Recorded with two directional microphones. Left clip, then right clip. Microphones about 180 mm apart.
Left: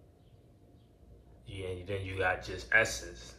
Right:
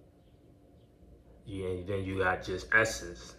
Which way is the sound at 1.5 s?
15° right (ahead or behind).